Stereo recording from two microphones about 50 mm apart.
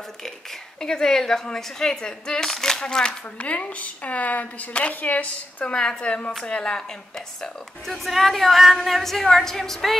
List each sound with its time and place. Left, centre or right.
0.7 s a woman's voice: centre; by 5.8 s left
5.8 s a woman's voice: centre